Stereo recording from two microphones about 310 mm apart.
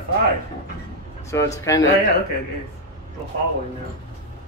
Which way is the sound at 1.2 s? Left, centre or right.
Centre.